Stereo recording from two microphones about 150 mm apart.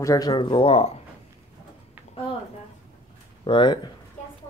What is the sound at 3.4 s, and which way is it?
Speech, 35° left (ahead or behind).